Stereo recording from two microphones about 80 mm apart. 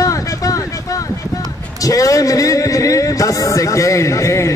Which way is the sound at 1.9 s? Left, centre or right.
Left.